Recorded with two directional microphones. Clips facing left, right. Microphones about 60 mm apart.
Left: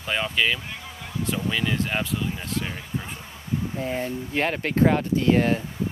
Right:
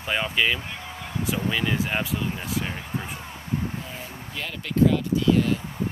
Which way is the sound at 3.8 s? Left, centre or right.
Left.